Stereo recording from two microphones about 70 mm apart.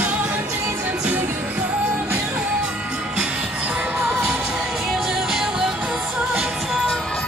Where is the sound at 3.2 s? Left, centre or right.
Centre.